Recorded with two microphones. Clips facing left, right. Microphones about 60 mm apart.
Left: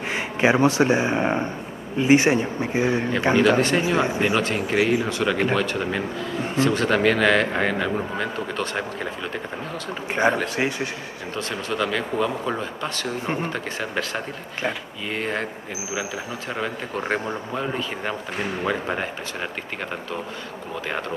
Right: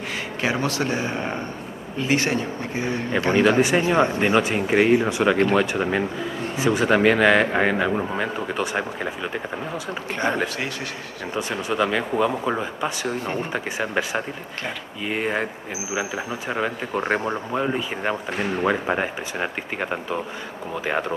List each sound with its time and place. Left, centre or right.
0.1 s speech: left
3.3 s speech: centre
10.3 s speech: centre
11.3 s speech: centre